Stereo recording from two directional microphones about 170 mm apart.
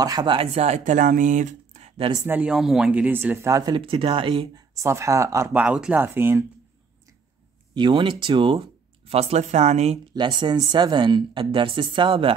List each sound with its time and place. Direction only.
0.0 s speech: 25° right (ahead or behind)
2.1 s speech: 10° right (ahead or behind); by 4.6 s 30° right (ahead or behind)
4.7 s speech: 15° right (ahead or behind)
7.7 s speech: 25° right (ahead or behind)
10.1 s a woman's voice: 25° right (ahead or behind)